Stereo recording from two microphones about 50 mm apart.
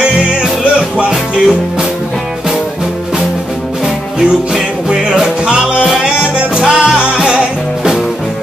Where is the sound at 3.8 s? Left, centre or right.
Centre.